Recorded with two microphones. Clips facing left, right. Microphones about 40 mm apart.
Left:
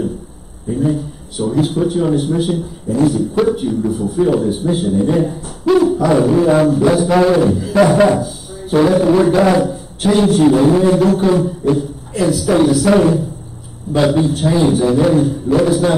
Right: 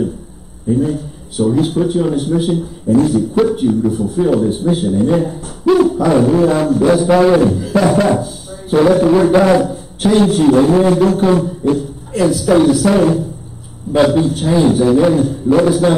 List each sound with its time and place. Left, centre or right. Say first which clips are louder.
0.7 s a man's voice: right 1 dB; centre